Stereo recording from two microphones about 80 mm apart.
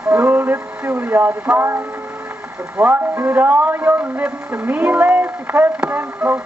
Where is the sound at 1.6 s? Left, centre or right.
Right.